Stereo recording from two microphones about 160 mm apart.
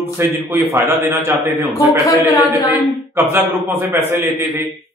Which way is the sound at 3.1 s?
15° right (ahead or behind).